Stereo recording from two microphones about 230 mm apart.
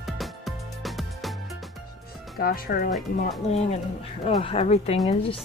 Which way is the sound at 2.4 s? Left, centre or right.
Left.